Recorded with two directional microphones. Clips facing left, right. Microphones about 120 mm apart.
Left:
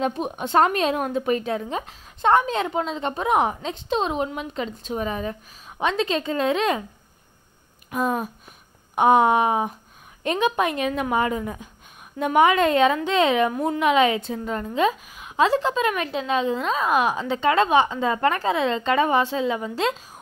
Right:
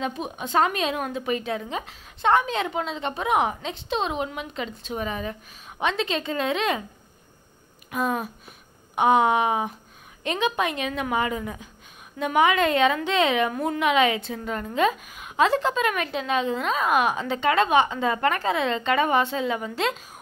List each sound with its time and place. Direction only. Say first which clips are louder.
0.0 s a woman's voice: left 4 dB; 50° left (ahead or behind)
8.9 s a woman's voice: left 2 dB; 40° left (ahead or behind)
13.5 s a woman's voice: left 2 dB; 15° left (ahead or behind)
13.7 s a woman's voice: left 2 dB; 35° left (ahead or behind)